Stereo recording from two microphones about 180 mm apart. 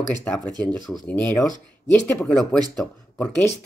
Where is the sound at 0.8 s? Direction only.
Centre (ahead or behind).